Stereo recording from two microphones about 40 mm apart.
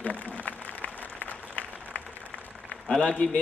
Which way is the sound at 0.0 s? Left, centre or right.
Left.